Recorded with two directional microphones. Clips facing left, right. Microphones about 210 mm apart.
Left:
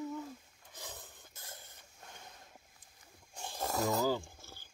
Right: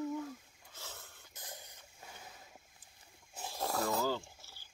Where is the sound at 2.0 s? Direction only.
5° right (ahead or behind).